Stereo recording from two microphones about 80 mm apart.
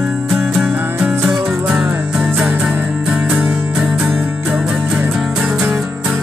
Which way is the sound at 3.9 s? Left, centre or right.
Centre.